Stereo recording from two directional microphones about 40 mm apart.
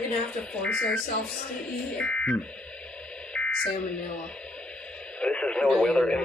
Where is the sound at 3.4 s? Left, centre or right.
Left.